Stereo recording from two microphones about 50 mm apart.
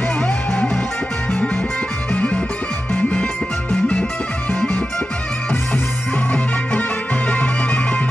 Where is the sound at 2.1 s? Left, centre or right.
Left.